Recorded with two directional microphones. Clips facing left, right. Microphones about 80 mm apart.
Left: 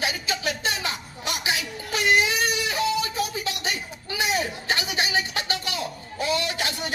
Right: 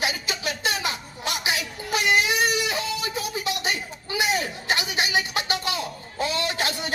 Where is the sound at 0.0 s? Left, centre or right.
Centre.